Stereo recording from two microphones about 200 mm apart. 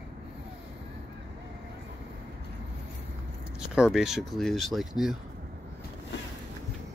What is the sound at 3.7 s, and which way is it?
Speech, 5° right (ahead or behind).